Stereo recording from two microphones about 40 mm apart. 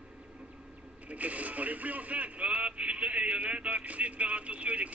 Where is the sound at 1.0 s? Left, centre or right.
Right.